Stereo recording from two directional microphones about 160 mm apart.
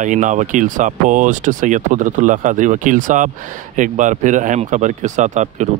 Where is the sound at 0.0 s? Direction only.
50° right (ahead or behind).